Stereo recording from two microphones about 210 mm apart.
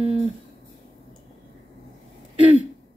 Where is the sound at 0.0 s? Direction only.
30° right (ahead or behind).